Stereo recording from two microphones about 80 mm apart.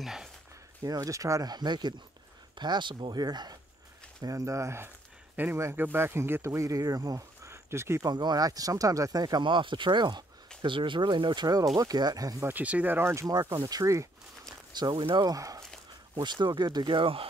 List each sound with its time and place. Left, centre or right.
0.0 s a sound: centre
0.8 s speech: right
4.2 s speech: right
5.3 s speech: right
8.0 s speech: right
9.4 s speech: right
10.6 s speech: right
12.4 s speech: right
13.7 s speech: right
14.7 s speech: right
15.2 s speech: right
16.2 s speech: right